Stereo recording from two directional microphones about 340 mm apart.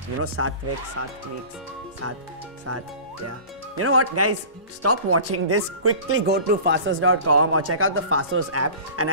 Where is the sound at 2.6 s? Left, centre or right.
Right.